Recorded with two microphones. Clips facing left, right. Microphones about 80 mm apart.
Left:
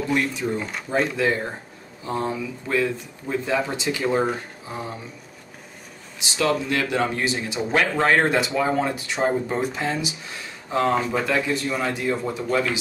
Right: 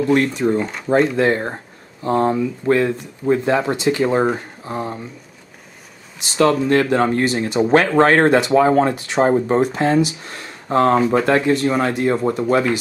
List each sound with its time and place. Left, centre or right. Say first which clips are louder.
0.1 s speech: right 7 dB; right
0.6 s speech: right 7 dB; centre
1.1 s speech: right 6 dB; right
2.6 s speech: right 5 dB; right
6.1 s speech: right 7 dB; right
8.6 s speech: right 8 dB; right